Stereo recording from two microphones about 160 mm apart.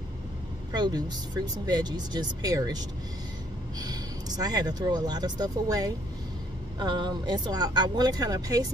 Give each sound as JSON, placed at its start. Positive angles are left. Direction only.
{"t": 0.7, "sound": "speech", "side_deg": -25}
{"t": 3.8, "sound": "speech", "side_deg": -25}